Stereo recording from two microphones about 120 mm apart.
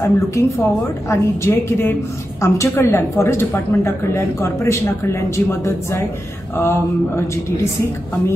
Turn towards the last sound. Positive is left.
turn(degrees=20)  # may be behind; listen again after turning